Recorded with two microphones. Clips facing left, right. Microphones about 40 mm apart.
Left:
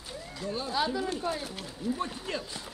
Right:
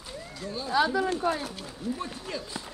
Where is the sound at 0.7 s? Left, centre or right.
Right.